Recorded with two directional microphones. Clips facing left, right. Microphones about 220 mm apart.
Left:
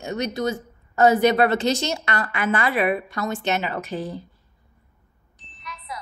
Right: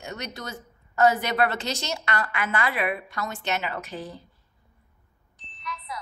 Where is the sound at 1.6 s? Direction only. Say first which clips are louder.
Left 9 dB; 50° left (ahead or behind).